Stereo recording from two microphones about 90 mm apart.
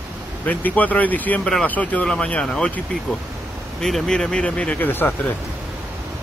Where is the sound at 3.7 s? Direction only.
5° left (ahead or behind); by 5.3 s 20° left (ahead or behind).